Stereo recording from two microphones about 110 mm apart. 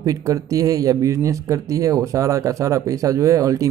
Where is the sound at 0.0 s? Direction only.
30° right (ahead or behind).